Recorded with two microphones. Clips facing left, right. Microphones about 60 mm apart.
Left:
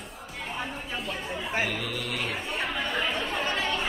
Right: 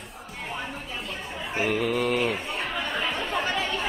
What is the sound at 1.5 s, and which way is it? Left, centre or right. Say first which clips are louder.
Speech: right 6 dB; centre.